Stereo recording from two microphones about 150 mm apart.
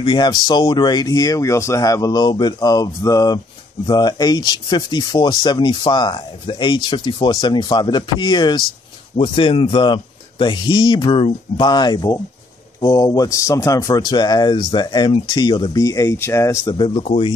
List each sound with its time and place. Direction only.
0.0 s speech: 30° left (ahead or behind)
16.6 s speech: 30° left (ahead or behind)
17.0 s a man's voice: 45° left (ahead or behind)